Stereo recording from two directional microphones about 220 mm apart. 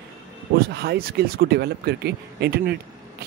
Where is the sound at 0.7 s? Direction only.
50° right (ahead or behind).